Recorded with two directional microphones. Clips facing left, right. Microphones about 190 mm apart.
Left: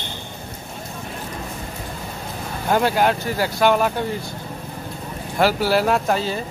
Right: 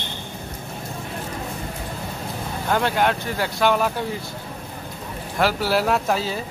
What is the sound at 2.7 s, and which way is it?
Speech, 10° left (ahead or behind).